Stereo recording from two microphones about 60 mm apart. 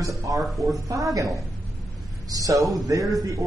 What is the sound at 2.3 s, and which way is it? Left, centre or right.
Speech, right.